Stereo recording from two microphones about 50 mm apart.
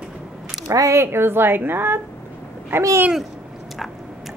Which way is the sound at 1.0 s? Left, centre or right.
Right.